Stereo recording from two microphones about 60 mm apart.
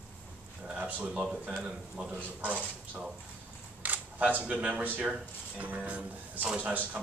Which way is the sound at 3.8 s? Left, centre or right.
Right.